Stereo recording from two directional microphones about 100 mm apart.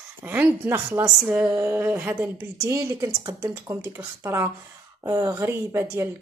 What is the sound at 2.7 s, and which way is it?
Speech, 30° right (ahead or behind).